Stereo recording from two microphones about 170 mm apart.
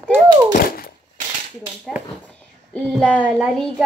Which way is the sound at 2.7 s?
10° left (ahead or behind).